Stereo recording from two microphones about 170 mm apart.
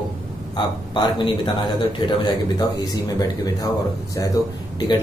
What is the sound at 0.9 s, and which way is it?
A man's voice, 25° left (ahead or behind).